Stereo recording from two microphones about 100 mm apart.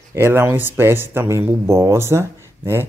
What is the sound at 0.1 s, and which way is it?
Speech, 25° right (ahead or behind).